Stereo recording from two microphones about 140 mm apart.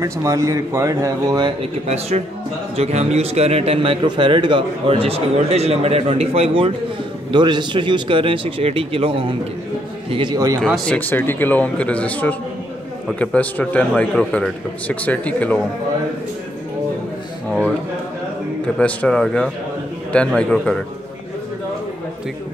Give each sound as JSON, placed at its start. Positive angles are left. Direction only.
{"t": 0.0, "sound": "speech", "side_deg": -20}
{"t": 1.9, "sound": "a man's voice", "side_deg": -50}
{"t": 10.6, "sound": "a man's voice", "side_deg": 5}
{"t": 17.5, "sound": "speech", "side_deg": 5}
{"t": 18.8, "sound": "a man's voice", "side_deg": 10}